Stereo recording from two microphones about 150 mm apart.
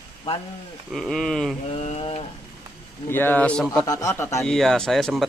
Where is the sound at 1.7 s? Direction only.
40° left (ahead or behind).